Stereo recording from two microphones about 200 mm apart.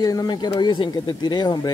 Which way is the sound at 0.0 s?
20° left (ahead or behind).